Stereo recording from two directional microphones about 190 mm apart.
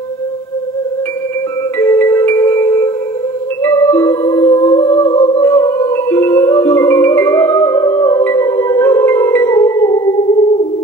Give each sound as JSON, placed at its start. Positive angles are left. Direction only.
{"t": 1.8, "sound": "music", "side_deg": 10}
{"t": 5.1, "sound": "music", "side_deg": 30}
{"t": 5.4, "sound": "music", "side_deg": 10}